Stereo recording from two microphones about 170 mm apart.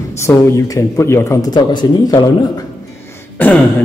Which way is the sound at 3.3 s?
10° left (ahead or behind).